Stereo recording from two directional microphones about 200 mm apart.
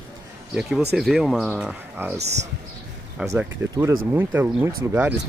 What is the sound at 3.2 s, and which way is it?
Speech, 15° right (ahead or behind).